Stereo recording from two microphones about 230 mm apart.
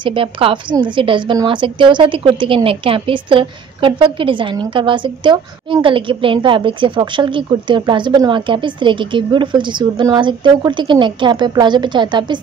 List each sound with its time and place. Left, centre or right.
0.0 s a woman's voice: right